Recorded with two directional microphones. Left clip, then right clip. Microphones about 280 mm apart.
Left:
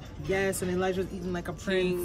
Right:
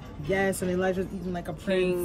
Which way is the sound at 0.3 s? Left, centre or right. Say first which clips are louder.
Right 2 dB; centre.